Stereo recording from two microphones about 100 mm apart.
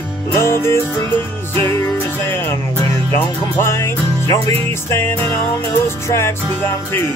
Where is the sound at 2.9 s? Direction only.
25° left (ahead or behind).